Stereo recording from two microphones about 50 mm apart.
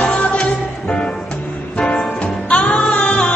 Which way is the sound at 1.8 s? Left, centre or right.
Left.